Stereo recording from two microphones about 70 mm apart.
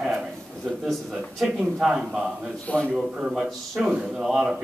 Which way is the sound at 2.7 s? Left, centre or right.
Left.